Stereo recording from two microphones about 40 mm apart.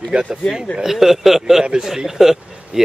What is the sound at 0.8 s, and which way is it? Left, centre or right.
Speech, centre.